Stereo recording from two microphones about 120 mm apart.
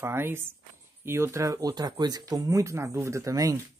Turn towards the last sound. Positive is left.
turn(degrees=-30)  # may be behind; listen again after turning